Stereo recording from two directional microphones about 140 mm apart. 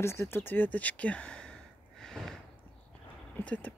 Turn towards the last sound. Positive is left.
turn(degrees=10)  # may be behind; listen again after turning